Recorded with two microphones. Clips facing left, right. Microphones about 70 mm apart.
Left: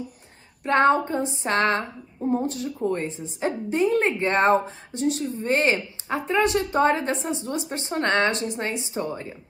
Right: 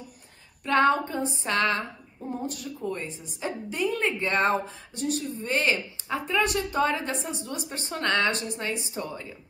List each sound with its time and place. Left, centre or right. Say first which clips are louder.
0.7 s speech: left 3 dB; left